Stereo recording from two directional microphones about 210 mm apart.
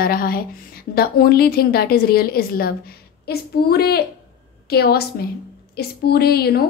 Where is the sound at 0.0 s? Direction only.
45° left (ahead or behind).